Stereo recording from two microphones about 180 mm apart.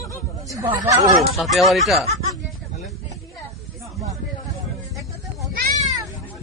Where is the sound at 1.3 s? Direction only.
Centre (ahead or behind).